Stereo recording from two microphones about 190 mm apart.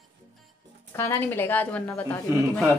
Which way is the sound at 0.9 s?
15° left (ahead or behind).